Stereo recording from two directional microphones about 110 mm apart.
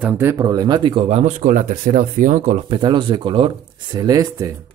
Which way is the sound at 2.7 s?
45° right (ahead or behind).